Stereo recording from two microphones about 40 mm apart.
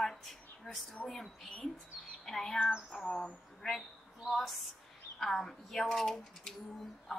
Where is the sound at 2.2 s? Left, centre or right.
Centre.